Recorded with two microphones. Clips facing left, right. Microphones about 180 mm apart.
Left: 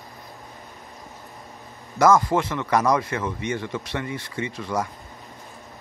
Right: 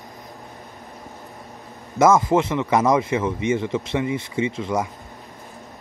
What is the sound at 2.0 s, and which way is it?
Speech, 20° right (ahead or behind).